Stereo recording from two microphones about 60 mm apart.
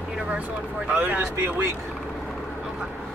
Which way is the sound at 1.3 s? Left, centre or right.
Right.